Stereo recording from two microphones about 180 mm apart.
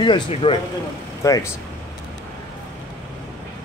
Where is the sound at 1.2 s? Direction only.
20° left (ahead or behind).